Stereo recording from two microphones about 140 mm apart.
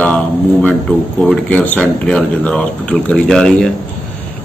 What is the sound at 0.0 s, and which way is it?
Speech, 10° left (ahead or behind).